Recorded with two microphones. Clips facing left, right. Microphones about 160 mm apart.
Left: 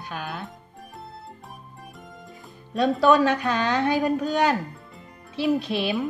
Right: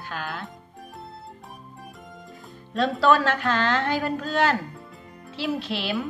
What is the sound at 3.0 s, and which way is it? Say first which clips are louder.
A woman's voice: left 2 dB; 15° left (ahead or behind).